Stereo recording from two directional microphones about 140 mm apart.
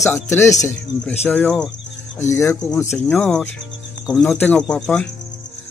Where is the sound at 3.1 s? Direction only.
10° left (ahead or behind).